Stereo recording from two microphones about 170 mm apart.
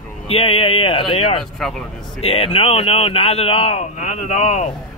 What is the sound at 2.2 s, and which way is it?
Speech, 35° left (ahead or behind).